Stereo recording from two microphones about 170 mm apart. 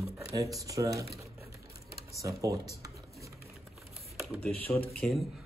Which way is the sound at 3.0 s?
20° right (ahead or behind).